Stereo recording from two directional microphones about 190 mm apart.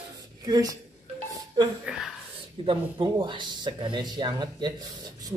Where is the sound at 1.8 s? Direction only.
Centre (ahead or behind).